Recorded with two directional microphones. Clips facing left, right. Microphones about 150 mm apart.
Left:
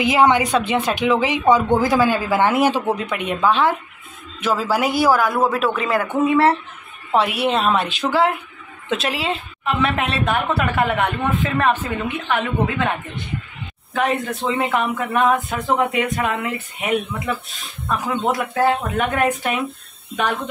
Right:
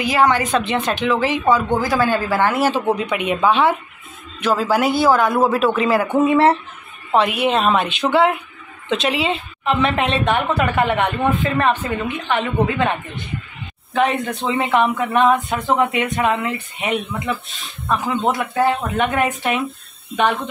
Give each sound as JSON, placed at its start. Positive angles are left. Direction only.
{"t": 0.0, "sound": "speech", "side_deg": 20}
{"t": 2.9, "sound": "a woman's voice", "side_deg": 0}
{"t": 6.1, "sound": "speech", "side_deg": -20}
{"t": 7.2, "sound": "a woman's voice", "side_deg": 5}
{"t": 13.9, "sound": "a woman's voice", "side_deg": 0}